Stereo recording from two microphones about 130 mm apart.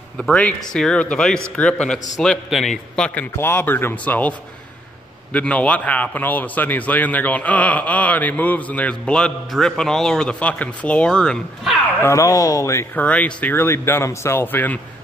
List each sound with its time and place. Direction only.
0.2 s a man's voice: 10° left (ahead or behind)
3.3 s a man's voice: 20° left (ahead or behind)
12.0 s speech: 25° left (ahead or behind)
13.0 s a man's voice: 10° left (ahead or behind)